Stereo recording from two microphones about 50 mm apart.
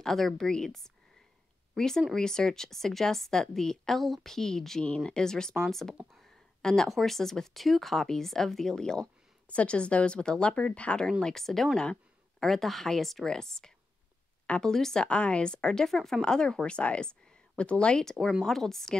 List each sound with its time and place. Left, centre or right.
0.0 s a woman's voice: centre
6.1 s a sound: centre
6.9 s a woman's voice: centre
9.5 s speech: left
11.1 s a woman's voice: centre
14.4 s a sound: left
14.7 s a woman's voice: centre
15.0 s a woman's voice: left